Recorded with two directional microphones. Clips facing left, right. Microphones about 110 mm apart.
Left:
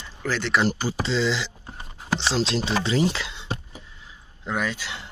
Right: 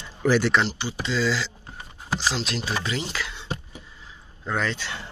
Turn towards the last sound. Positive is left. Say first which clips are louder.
# even
turn(degrees=10)  # may be behind; listen again after turning